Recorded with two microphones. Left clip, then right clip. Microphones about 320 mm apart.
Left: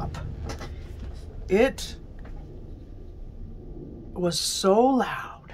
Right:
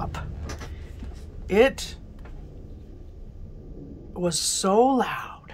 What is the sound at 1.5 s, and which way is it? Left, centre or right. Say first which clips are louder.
Speech: right 2 dB; centre.